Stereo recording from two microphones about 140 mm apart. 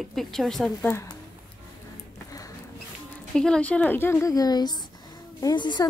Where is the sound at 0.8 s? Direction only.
20° left (ahead or behind).